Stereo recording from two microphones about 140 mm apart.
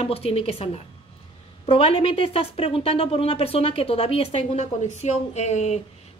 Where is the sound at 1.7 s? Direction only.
45° left (ahead or behind).